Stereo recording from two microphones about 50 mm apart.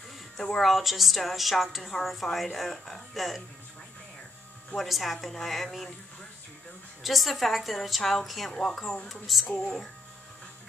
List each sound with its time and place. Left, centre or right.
0.4 s speech: centre
0.7 s a woman's voice: centre
4.7 s a woman's voice: centre
7.0 s a woman's voice: centre
8.5 s a woman's voice: centre
9.5 s speech: centre